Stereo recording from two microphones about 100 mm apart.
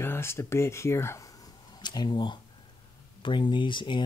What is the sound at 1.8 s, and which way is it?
Speech, 45° left (ahead or behind).